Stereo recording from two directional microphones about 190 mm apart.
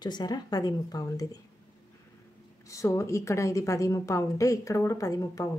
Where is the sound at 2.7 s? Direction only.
15° left (ahead or behind).